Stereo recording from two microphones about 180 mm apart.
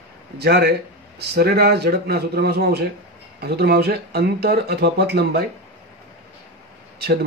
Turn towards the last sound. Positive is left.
turn(degrees=-60)  # may be behind; listen again after turning